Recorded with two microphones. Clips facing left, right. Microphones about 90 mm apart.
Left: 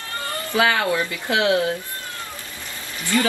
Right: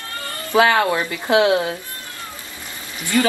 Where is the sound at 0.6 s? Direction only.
35° right (ahead or behind).